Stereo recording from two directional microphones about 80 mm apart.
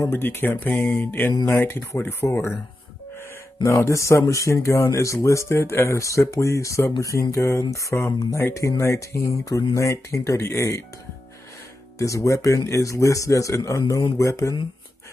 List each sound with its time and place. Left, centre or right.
0.1 s speech: left
3.6 s speech: left
12.0 s speech: left